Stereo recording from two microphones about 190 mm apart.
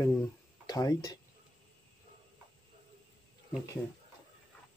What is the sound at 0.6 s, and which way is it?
Speech, 20° left (ahead or behind).